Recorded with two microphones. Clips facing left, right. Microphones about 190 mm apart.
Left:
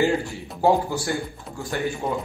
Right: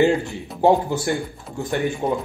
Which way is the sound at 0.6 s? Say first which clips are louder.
Right 3 dB; 20° right (ahead or behind).